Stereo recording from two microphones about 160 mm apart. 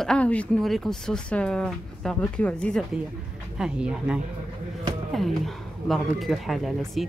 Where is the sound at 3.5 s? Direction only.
5° right (ahead or behind).